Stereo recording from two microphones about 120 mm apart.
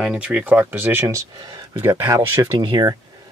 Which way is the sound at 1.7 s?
25° right (ahead or behind).